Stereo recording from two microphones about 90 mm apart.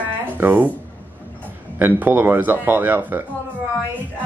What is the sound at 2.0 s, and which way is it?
Speech, 20° right (ahead or behind).